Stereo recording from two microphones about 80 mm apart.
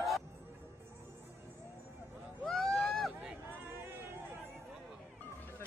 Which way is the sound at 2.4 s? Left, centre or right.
Centre.